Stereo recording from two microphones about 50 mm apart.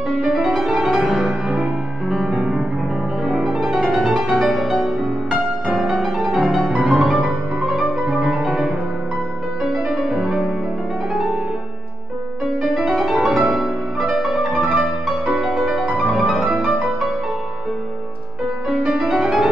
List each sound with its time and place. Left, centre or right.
0.2 s music: centre
12.7 s music: centre
15.0 s music: right
15.6 s music: centre
18.7 s music: centre